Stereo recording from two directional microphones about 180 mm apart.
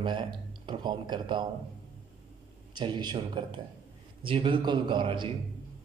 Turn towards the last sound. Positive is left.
turn(degrees=-30)  # may be behind; listen again after turning